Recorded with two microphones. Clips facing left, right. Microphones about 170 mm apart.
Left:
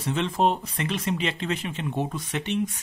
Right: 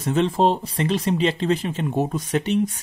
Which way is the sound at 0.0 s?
40° right (ahead or behind).